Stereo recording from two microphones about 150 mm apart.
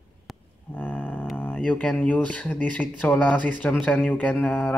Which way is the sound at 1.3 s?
10° left (ahead or behind).